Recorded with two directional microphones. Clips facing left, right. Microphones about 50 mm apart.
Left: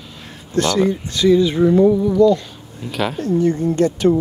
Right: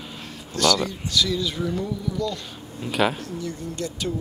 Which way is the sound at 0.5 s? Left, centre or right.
Left.